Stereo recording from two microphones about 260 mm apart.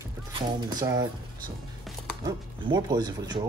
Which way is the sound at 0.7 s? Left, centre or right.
Centre.